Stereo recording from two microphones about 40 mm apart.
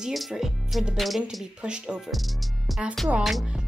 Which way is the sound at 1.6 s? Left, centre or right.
Right.